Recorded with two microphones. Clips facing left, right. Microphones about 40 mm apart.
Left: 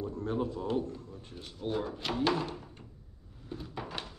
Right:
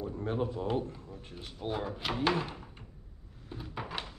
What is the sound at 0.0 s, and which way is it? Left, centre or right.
Speech, right.